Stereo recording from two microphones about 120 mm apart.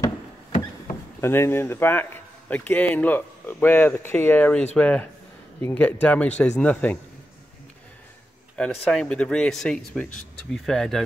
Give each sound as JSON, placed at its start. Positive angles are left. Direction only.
{"t": 1.2, "sound": "a man's voice", "side_deg": 20}
{"t": 8.5, "sound": "a man's voice", "side_deg": 5}